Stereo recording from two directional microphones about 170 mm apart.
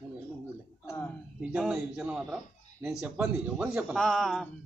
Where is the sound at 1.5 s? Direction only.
5° right (ahead or behind).